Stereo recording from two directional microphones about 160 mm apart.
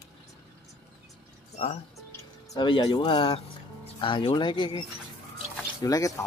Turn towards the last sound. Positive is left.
turn(degrees=20)  # may be behind; listen again after turning